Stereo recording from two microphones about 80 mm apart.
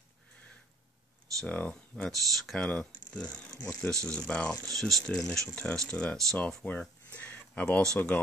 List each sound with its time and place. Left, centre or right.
1.4 s speech: centre
2.0 s speech: centre